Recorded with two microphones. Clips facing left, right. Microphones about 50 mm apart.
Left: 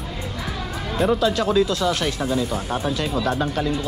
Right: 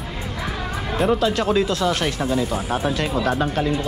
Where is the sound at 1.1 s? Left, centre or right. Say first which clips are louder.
Even; right.